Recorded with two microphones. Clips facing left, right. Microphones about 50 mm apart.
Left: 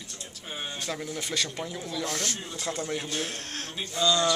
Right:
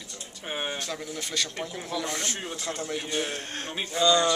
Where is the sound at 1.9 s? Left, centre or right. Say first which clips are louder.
Right 1 dB; centre.